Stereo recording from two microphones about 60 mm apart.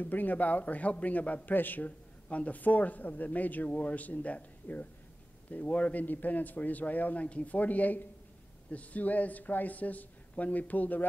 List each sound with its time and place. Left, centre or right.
0.0 s a man's voice: left